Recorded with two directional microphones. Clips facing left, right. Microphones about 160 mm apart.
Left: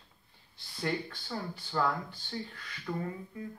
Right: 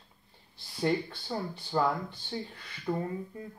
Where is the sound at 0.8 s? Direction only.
20° right (ahead or behind).